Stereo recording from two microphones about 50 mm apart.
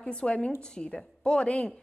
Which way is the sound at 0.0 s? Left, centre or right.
Centre.